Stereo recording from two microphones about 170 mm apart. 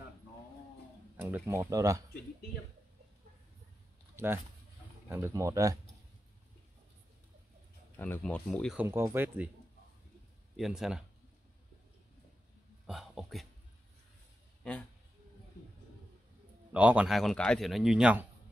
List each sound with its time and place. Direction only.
1.1 s speech: 10° right (ahead or behind)
4.2 s speech: 15° right (ahead or behind)
8.0 s a man's voice: 10° left (ahead or behind)
8.7 s speech: 15° right (ahead or behind)
10.5 s a man's voice: centre (ahead or behind)
12.8 s a sound: centre (ahead or behind)
14.6 s a man's voice: 5° left (ahead or behind)
16.7 s a man's voice: 10° right (ahead or behind)